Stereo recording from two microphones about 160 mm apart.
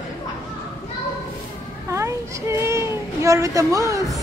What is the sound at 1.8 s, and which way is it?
Child singing, 20° right (ahead or behind).